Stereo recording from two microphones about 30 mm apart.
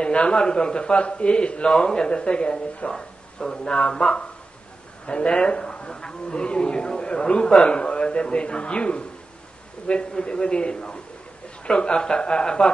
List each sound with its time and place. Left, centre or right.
0.0 s a sound: left
0.4 s a man's voice: left
2.9 s a man's voice: left
5.0 s speech: left
5.4 s a sound: left
6.2 s a man's voice: left